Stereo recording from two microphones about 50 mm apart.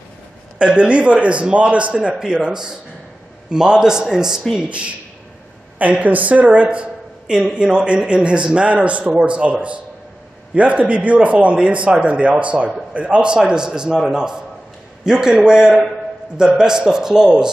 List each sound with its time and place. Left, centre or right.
0.6 s a man's voice: right
4.6 s a man's voice: right